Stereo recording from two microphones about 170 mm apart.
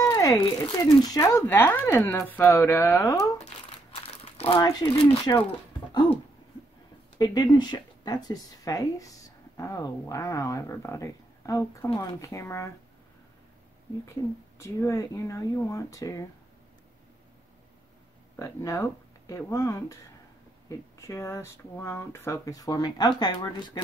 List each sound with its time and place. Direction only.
0.0 s speech: 20° left (ahead or behind)
3.9 s crumpling: 35° left (ahead or behind)
4.6 s speech: 25° left (ahead or behind)
7.5 s speech: 25° left (ahead or behind)
14.6 s speech: 15° left (ahead or behind)
18.3 s speech: 20° left (ahead or behind)